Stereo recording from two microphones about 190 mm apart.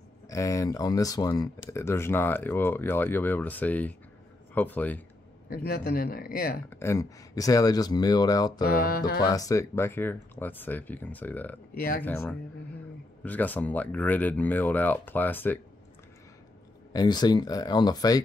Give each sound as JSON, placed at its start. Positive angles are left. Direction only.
{"t": 0.3, "sound": "speech", "side_deg": 15}
{"t": 5.5, "sound": "speech", "side_deg": 55}
{"t": 6.7, "sound": "speech", "side_deg": 15}
{"t": 8.6, "sound": "speech", "side_deg": 50}
{"t": 9.2, "sound": "speech", "side_deg": 20}
{"t": 16.9, "sound": "speech", "side_deg": 20}